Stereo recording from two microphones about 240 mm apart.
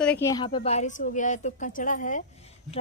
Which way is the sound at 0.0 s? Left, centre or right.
Centre.